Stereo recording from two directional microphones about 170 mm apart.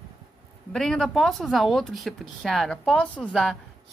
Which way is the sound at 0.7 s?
5° left (ahead or behind).